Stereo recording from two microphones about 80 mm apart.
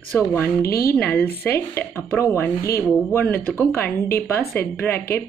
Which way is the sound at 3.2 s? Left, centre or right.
Left.